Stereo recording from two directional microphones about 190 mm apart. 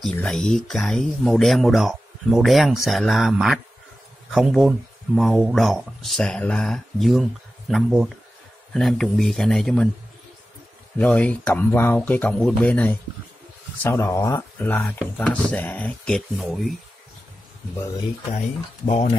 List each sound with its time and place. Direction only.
0.0 s speech: 5° left (ahead or behind)
11.0 s speech: 5° left (ahead or behind)
18.9 s speech: 30° left (ahead or behind)